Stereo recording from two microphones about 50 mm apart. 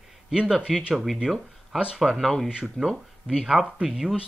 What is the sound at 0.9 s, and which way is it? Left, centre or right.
Speech, centre.